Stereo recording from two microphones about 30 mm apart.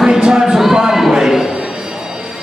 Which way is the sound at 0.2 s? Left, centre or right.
Right.